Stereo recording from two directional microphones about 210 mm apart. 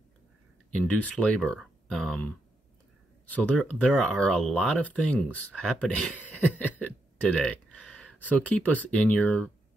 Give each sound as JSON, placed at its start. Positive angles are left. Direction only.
{"t": 0.7, "sound": "speech", "side_deg": 5}